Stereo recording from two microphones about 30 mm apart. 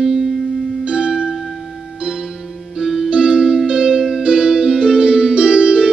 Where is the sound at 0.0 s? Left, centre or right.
Centre.